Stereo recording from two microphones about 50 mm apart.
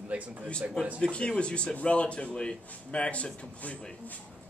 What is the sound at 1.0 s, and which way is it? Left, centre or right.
Speech, centre.